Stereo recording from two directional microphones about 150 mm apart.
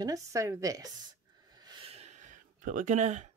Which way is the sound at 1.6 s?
30° right (ahead or behind).